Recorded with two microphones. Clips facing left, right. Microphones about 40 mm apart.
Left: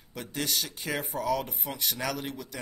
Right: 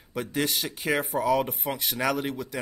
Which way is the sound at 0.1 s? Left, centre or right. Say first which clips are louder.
Right 5 dB; centre.